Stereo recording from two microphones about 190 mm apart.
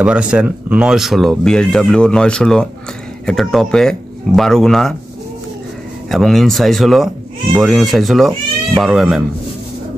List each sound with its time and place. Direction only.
0.0 s speech: 5° right (ahead or behind)
6.0 s speech: centre (ahead or behind)